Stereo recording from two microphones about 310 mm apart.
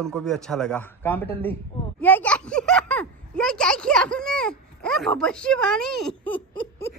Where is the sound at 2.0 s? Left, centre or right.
Centre.